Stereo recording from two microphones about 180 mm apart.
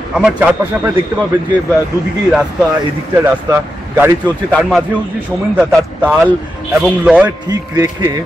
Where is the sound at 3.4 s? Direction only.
15° right (ahead or behind).